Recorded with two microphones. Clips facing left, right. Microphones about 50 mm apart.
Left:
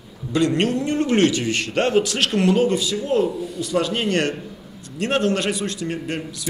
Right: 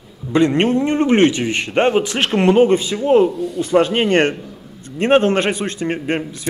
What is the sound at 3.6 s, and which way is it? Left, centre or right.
Speech, right.